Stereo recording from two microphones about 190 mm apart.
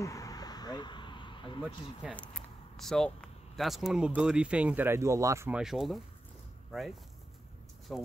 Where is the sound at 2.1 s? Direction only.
5° left (ahead or behind); by 5.6 s 15° right (ahead or behind).